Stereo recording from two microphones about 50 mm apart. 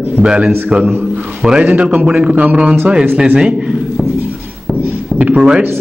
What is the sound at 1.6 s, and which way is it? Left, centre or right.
A man's voice, right.